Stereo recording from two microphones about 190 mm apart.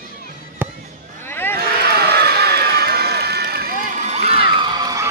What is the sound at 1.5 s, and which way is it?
Run, 55° right (ahead or behind).